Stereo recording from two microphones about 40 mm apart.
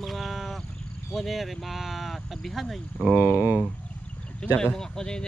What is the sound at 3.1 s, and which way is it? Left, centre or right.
Speech, right.